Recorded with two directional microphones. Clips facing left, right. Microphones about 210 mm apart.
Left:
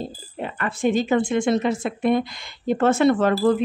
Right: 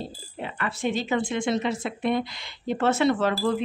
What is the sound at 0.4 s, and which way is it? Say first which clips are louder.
Speech: left 5 dB; 50° left (ahead or behind).